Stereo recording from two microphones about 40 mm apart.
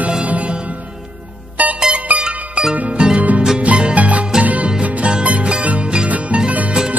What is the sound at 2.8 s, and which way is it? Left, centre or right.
Music, right.